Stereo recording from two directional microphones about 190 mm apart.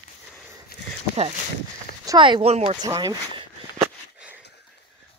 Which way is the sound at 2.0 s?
20° right (ahead or behind).